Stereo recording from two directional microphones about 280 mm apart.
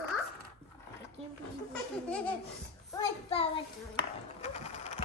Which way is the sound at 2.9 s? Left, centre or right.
Centre.